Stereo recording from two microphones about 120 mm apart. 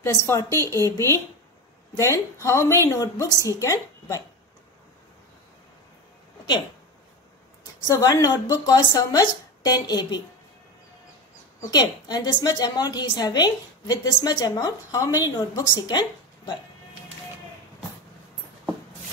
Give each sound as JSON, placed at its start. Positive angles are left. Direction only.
{"t": 0.0, "sound": "a woman's voice", "side_deg": 25}
{"t": 7.8, "sound": "a woman's voice", "side_deg": 35}
{"t": 11.6, "sound": "a woman's voice", "side_deg": 35}